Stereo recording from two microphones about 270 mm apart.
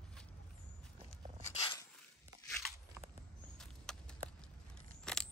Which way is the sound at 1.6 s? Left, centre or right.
Centre.